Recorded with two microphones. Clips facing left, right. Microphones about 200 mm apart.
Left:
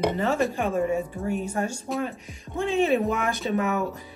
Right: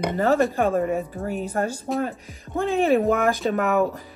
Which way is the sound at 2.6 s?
55° right (ahead or behind).